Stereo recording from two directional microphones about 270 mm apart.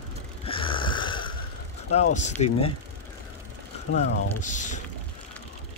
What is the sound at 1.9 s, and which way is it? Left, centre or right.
Speech, left.